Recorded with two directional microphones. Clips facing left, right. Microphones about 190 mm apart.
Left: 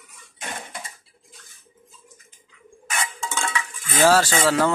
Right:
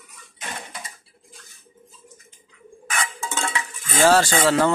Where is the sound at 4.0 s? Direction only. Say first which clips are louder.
Right 1 dB; 5° left (ahead or behind).